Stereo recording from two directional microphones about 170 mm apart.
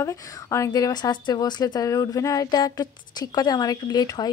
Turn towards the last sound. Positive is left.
turn(degrees=25)  # may be behind; listen again after turning